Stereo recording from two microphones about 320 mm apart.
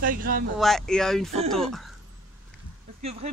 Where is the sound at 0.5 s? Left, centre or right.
Centre.